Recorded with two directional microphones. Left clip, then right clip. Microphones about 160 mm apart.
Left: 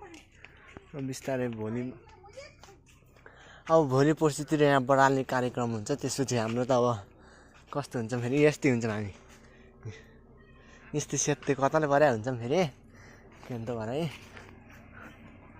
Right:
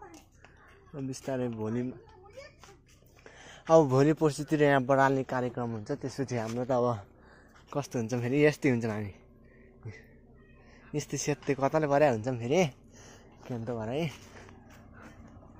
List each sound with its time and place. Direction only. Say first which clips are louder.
0.9 s speech: left 2 dB; centre (ahead or behind)
1.5 s speech: right 1 dB; 20° right (ahead or behind)
3.3 s a sound: right 2 dB; 35° right (ahead or behind)
3.9 s speech: even; 15° right (ahead or behind)
5.6 s speech: left 3 dB; 15° left (ahead or behind)
6.8 s speech: left 2 dB; centre (ahead or behind)
7.7 s speech: even; 20° right (ahead or behind); by 9.1 s 5° right (ahead or behind)
10.9 s speech: left 2 dB; centre (ahead or behind); by 12.7 s 20° right (ahead or behind)
13.6 s speech: left 1 dB; 10° right (ahead or behind)